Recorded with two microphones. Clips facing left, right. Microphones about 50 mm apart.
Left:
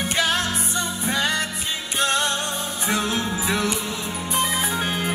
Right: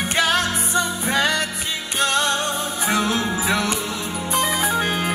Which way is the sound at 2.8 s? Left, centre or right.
Right.